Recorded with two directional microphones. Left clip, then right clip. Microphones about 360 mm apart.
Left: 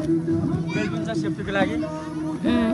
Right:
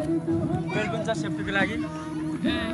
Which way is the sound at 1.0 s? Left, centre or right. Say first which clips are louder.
Left 1 dB; centre.